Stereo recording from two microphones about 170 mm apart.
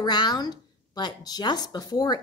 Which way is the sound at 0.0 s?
25° left (ahead or behind).